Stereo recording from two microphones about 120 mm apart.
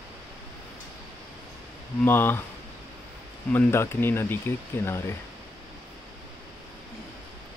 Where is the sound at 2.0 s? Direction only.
20° left (ahead or behind).